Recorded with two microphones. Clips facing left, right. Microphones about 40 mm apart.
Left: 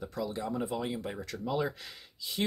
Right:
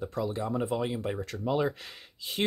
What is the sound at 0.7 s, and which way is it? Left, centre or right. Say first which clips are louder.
Speech: right 4 dB; centre.